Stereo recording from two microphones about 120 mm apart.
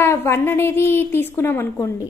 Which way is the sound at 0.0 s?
20° left (ahead or behind).